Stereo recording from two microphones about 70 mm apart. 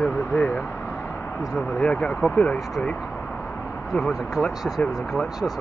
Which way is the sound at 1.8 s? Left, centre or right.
Centre.